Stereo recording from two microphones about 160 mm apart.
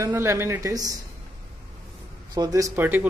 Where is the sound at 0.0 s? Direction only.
15° right (ahead or behind).